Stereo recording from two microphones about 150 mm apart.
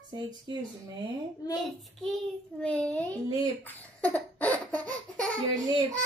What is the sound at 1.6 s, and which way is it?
Child singing, centre (ahead or behind).